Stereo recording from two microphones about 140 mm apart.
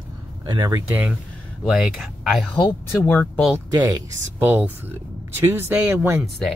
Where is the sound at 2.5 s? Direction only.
40° left (ahead or behind).